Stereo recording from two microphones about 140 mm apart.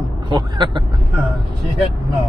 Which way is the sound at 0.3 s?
35° right (ahead or behind).